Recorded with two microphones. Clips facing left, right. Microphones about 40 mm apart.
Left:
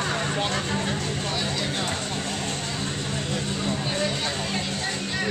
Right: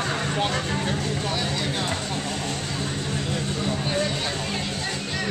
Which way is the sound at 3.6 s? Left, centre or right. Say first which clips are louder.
Right 2 dB; centre.